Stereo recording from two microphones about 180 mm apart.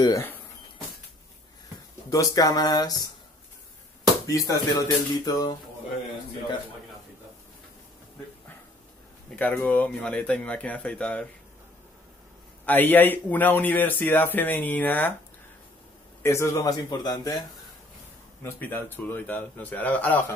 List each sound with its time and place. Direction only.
0.0 s speech: 15° left (ahead or behind)
2.0 s a man's voice: 20° left (ahead or behind)
4.5 s a man's voice: 20° left (ahead or behind)
9.3 s speech: 5° left (ahead or behind)
12.6 s speech: 10° left (ahead or behind)
16.2 s a man's voice: 15° left (ahead or behind)
18.4 s speech: 10° left (ahead or behind)